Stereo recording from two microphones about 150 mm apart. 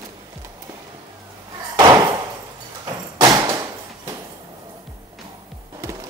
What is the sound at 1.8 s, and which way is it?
Slam, 25° right (ahead or behind).